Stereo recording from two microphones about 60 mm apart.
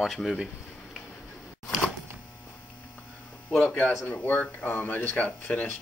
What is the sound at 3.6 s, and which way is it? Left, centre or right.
Speech, left.